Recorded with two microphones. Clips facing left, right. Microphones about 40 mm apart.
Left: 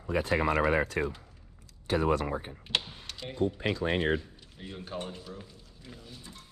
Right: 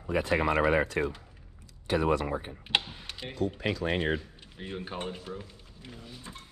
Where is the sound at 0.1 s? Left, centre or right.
Right.